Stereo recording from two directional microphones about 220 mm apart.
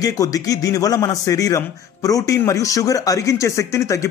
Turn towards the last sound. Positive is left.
turn(degrees=15)  # may be behind; listen again after turning